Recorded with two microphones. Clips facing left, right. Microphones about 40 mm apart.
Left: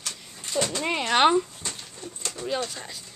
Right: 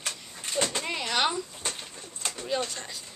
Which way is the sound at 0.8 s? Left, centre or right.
Left.